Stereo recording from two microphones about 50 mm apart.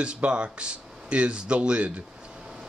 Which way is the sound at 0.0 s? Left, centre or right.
Centre.